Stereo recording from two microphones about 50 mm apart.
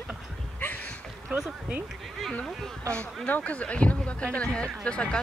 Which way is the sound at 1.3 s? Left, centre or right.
Right.